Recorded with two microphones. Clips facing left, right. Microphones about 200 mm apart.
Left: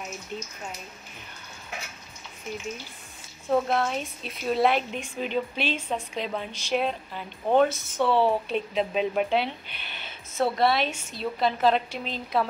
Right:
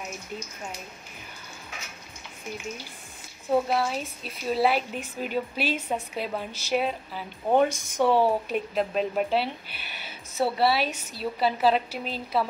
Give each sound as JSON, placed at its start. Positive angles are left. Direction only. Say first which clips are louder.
{"t": 3.4, "sound": "a woman's voice", "louder": "even", "side_deg": -10}
{"t": 7.5, "sound": "speech", "louder": "left 1 dB", "side_deg": -15}